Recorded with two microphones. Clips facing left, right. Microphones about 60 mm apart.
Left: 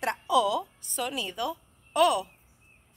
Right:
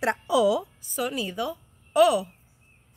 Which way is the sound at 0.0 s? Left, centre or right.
Centre.